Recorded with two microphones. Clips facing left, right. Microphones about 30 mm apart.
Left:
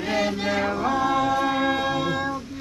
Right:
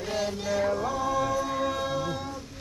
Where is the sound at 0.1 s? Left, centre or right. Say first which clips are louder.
Left 5 dB; left.